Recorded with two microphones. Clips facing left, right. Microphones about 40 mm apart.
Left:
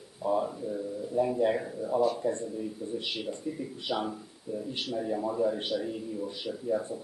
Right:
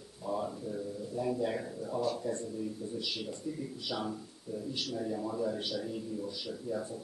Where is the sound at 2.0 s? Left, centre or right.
Left.